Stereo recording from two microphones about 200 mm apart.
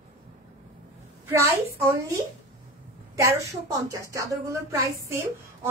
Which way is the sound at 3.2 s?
15° right (ahead or behind).